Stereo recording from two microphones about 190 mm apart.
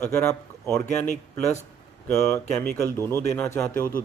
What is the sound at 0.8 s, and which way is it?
Speech, 40° left (ahead or behind).